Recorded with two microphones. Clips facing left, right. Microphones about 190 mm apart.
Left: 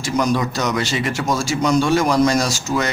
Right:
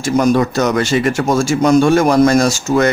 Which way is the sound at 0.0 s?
50° right (ahead or behind).